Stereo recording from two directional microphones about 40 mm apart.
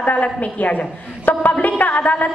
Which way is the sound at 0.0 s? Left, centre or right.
Left.